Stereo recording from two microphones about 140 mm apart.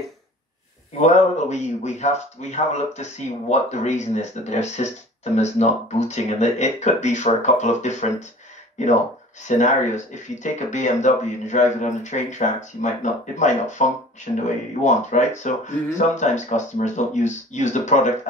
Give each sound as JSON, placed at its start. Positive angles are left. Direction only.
{"t": 1.0, "sound": "speech", "side_deg": 55}